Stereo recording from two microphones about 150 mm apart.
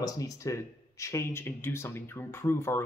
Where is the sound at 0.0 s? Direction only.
20° left (ahead or behind).